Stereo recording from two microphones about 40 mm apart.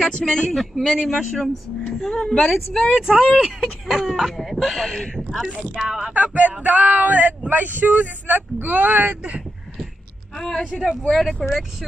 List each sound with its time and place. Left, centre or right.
0.0 s speech: centre
0.9 s a sound: centre
2.0 s speech: centre
2.4 s a sound: centre
2.9 s speech: centre
3.8 s a sound: centre
5.9 s speech: centre
6.1 s speech: right
10.3 s a woman's voice: centre
10.6 s speech: centre
11.0 s speech: centre